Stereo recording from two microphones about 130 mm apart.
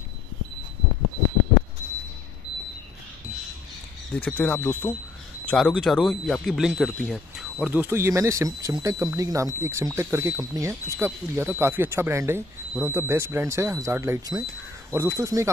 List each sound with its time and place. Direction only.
4.1 s speech: 10° left (ahead or behind); by 15.5 s 25° right (ahead or behind)